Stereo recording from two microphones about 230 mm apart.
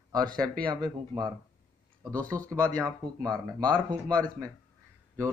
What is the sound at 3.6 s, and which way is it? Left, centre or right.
Speech, centre.